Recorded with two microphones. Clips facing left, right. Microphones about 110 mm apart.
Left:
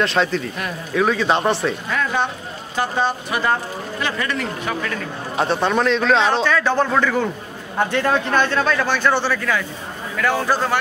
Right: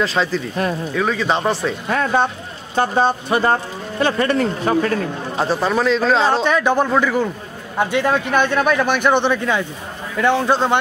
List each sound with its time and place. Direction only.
0.0 s speech: centre (ahead or behind)
1.9 s speech: 40° right (ahead or behind)
5.4 s speech: centre (ahead or behind)
6.4 s a man's voice: 20° right (ahead or behind)